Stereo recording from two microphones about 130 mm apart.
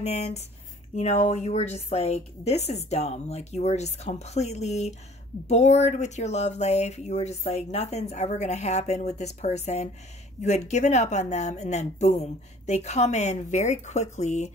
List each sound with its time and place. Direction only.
0.0 s speech: 60° left (ahead or behind)